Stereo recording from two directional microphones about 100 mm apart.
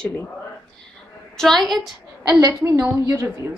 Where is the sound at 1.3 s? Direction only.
5° left (ahead or behind).